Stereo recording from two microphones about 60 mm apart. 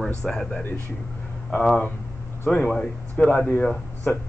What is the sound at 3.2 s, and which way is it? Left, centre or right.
Speech, left.